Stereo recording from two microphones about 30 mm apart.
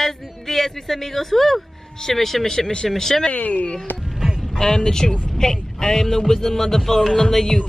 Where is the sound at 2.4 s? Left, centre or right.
Centre.